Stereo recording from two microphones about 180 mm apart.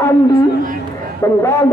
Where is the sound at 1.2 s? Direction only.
15° left (ahead or behind).